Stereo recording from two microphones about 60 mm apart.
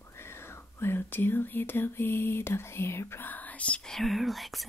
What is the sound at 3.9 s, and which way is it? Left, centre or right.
Speech, centre.